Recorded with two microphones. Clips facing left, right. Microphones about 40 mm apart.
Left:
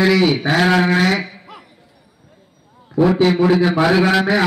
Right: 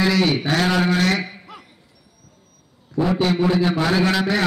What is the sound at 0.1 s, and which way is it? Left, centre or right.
Speech, centre.